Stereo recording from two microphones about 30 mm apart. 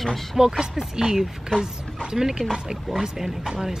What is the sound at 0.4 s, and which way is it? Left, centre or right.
Speech, centre.